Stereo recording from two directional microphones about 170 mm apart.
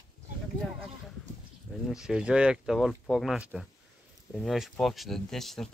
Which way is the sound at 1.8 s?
5° right (ahead or behind).